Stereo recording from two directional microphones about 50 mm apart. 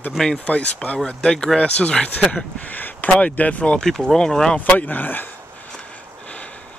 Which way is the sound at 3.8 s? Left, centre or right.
Centre.